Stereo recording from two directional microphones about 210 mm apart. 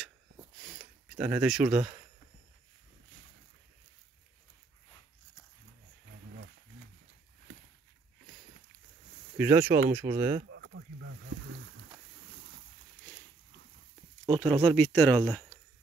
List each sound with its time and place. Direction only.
0.6 s a sound: 5° right (ahead or behind)
9.4 s speech: 10° right (ahead or behind)
10.5 s boat: 60° right (ahead or behind)
14.4 s speech: 5° left (ahead or behind)